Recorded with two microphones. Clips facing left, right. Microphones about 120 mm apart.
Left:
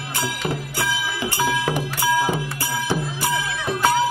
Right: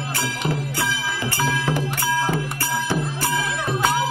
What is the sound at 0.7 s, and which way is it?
Music, 15° left (ahead or behind).